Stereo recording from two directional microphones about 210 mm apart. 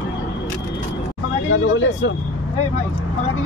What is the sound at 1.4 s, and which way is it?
Speech, 65° left (ahead or behind).